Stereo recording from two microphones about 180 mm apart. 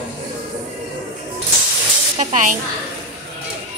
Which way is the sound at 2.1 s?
45° right (ahead or behind).